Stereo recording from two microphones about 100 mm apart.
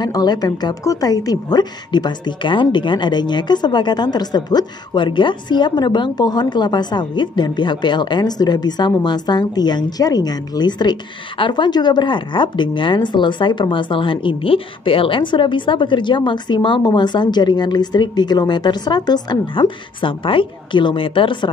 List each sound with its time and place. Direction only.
0.0 s a woman's voice: 45° left (ahead or behind)